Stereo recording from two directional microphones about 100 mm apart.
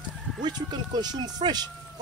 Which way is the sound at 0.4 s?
45° right (ahead or behind).